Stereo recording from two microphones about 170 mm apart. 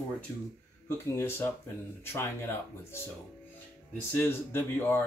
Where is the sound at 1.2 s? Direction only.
15° left (ahead or behind).